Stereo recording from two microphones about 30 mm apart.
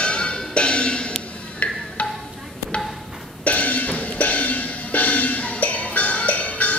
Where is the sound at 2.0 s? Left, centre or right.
Left.